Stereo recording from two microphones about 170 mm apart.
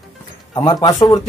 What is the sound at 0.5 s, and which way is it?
Speech, 25° left (ahead or behind).